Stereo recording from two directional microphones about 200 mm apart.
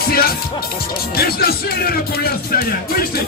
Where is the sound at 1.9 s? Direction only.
50° left (ahead or behind).